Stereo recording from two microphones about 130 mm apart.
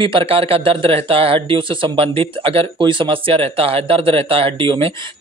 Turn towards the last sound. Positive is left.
turn(degrees=-45)  # may be behind; listen again after turning